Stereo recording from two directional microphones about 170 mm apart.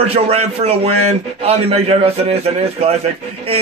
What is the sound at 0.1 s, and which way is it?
Speech, 35° right (ahead or behind).